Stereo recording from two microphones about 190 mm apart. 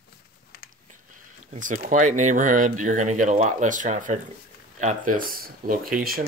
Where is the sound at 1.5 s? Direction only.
45° right (ahead or behind).